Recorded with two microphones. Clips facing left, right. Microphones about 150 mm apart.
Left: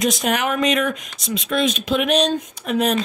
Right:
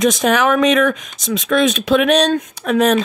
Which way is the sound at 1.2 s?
85° right.